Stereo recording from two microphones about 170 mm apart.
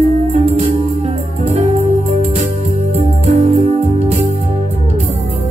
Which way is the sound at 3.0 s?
40° right (ahead or behind).